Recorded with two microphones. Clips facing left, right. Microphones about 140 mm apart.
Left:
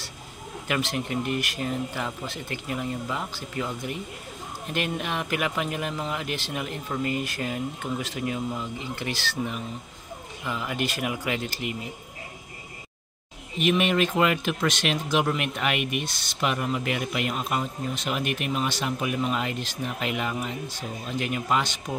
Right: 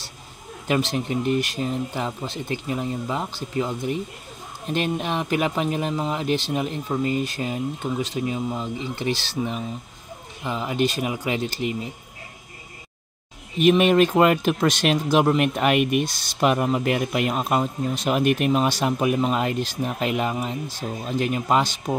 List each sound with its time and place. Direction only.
0.7 s speech: 30° right (ahead or behind)
4.7 s speech: 30° right (ahead or behind)
13.6 s speech: 40° right (ahead or behind)